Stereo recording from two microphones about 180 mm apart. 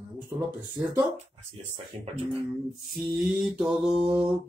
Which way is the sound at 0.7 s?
20° right (ahead or behind).